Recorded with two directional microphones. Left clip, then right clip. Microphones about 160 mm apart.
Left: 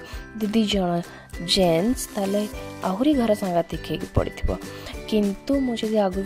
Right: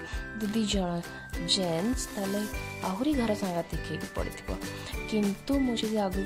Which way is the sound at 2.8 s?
45° left (ahead or behind).